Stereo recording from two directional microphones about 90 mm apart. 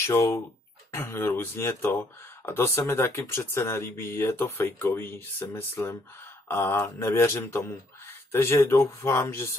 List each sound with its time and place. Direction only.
0.0 s speech: 30° left (ahead or behind)